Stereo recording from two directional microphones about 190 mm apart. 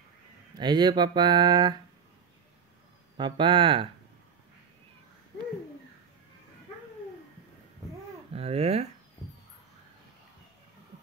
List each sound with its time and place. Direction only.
0.6 s speech: 25° right (ahead or behind)
3.2 s speech: 25° right (ahead or behind)
8.3 s speech: 30° right (ahead or behind)